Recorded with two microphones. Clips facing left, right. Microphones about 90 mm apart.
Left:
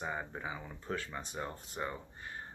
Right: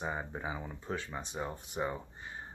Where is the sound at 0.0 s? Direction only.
20° right (ahead or behind).